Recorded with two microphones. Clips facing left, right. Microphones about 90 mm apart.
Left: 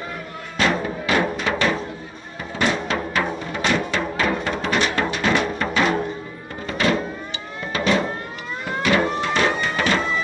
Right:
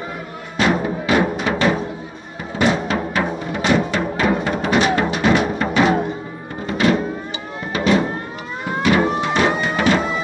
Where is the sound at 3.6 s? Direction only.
20° right (ahead or behind).